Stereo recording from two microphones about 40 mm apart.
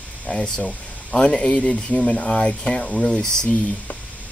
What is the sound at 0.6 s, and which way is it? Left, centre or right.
Speech, left.